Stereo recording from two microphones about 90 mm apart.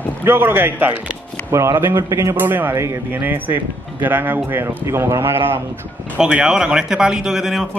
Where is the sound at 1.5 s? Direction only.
35° right (ahead or behind).